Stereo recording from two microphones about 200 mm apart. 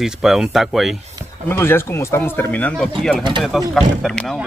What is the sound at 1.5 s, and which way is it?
Speech, 10° left (ahead or behind).